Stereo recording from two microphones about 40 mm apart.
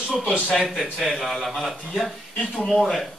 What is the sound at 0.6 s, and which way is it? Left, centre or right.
A man's voice, centre.